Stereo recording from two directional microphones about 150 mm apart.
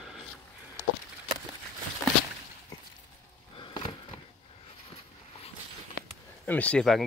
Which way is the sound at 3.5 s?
35° left (ahead or behind).